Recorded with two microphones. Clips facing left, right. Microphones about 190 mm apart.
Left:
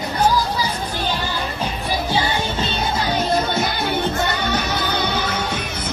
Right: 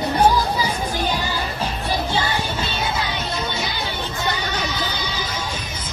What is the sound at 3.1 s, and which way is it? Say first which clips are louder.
Music: left 7 dB; 55° left (ahead or behind).